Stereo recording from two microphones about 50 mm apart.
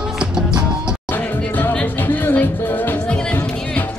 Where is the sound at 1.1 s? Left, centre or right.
Left.